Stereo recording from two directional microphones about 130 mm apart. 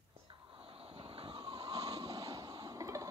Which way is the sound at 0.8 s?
45° right (ahead or behind).